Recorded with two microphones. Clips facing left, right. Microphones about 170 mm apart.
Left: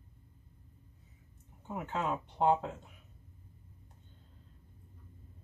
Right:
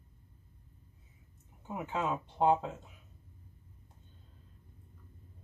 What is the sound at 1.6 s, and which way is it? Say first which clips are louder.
Speech: right 1 dB; 10° right (ahead or behind).